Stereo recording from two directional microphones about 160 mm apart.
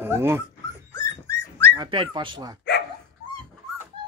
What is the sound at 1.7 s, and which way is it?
Dog, 30° right (ahead or behind).